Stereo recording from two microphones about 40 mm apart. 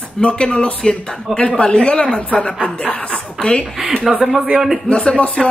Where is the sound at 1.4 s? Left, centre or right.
Left.